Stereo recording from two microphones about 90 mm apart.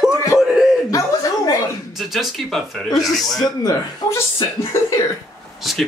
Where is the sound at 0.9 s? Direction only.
35° left (ahead or behind).